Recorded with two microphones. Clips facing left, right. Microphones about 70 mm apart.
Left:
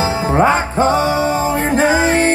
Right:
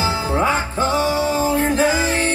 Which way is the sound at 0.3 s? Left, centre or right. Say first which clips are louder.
Left 8 dB; left.